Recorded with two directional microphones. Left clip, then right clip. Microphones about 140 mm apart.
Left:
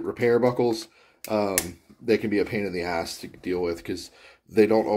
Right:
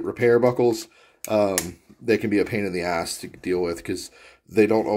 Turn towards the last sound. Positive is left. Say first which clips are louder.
# right 1 dB
turn(degrees=-25)  # may be behind; listen again after turning